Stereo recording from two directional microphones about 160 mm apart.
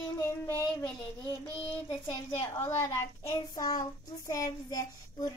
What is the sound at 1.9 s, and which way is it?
A child's voice, 15° left (ahead or behind).